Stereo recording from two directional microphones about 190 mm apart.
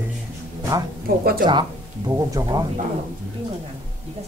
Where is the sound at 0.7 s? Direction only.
20° right (ahead or behind).